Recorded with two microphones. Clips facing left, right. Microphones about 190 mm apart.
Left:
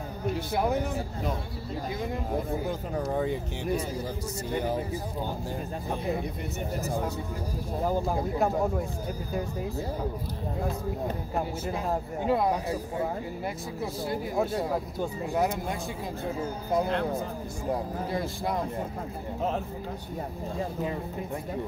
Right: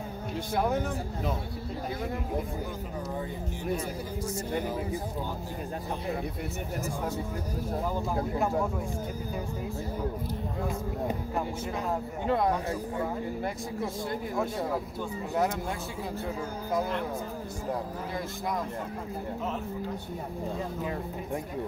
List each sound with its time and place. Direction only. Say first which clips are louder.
0.5 s speech: even; 10° left (ahead or behind)
3.1 s speech: left 9 dB; 75° left (ahead or behind)
12.3 s speech: left 1 dB; 10° left (ahead or behind)